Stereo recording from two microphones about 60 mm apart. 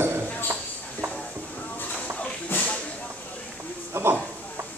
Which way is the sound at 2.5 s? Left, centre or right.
Left.